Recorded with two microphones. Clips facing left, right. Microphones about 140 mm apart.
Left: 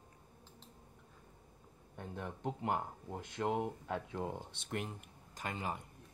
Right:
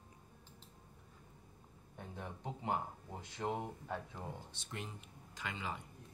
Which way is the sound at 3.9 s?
80° left.